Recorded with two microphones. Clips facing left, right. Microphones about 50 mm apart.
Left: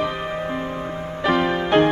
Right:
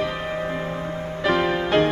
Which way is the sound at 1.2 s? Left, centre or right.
Centre.